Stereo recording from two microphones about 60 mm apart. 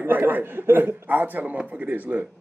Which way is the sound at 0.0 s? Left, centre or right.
Right.